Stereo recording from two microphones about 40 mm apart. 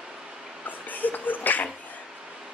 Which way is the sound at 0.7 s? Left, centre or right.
Left.